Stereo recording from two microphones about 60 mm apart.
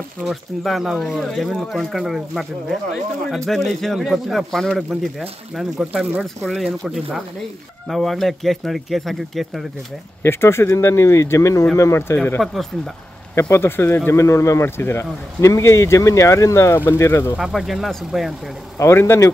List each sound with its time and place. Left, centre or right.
0.2 s speech: centre
10.2 s speech: left
12.4 s speech: centre
13.3 s speech: left
14.1 s speech: left
16.7 s speech: left
17.0 s speech: left
17.4 s speech: centre
18.8 s speech: left